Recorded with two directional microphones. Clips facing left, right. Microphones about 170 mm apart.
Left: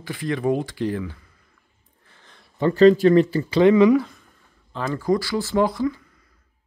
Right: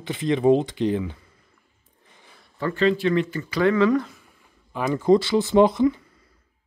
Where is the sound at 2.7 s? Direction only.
40° left (ahead or behind); by 4.0 s 15° left (ahead or behind).